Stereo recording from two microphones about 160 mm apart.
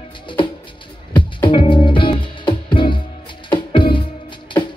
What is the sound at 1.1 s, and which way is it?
Music, 30° left (ahead or behind).